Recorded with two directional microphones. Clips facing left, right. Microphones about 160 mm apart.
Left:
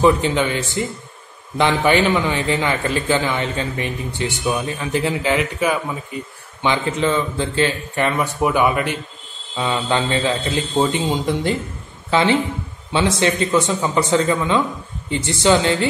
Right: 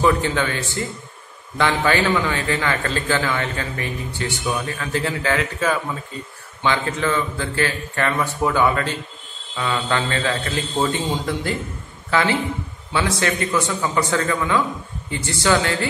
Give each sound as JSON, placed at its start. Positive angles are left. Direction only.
{"t": 0.0, "sound": "a man's voice", "side_deg": 20}